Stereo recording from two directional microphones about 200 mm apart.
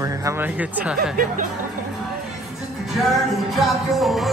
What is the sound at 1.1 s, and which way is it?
Speech, 45° right (ahead or behind).